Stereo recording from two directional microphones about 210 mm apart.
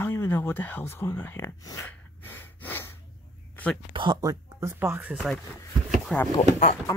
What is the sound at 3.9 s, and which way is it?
Speech, 20° right (ahead or behind).